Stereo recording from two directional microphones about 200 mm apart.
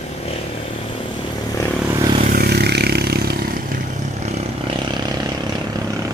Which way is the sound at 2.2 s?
45° right (ahead or behind).